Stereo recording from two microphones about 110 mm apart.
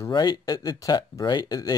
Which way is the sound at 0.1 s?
40° left (ahead or behind).